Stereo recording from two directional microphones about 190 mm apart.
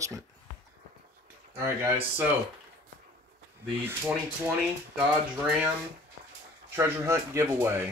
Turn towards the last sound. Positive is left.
turn(degrees=-15)  # may be behind; listen again after turning